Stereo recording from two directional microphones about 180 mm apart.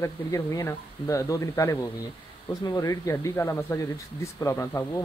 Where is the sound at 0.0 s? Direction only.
20° left (ahead or behind).